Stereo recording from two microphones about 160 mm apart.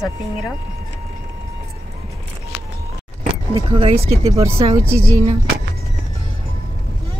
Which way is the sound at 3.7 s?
35° right (ahead or behind).